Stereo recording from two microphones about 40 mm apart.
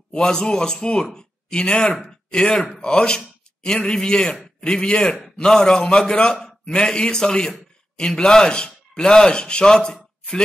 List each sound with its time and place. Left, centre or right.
0.1 s a man's voice: centre
2.8 s a man's voice: left